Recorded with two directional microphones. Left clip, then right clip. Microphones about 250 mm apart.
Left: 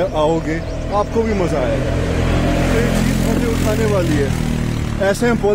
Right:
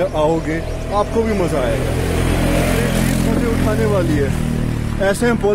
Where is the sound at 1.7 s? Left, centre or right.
Right.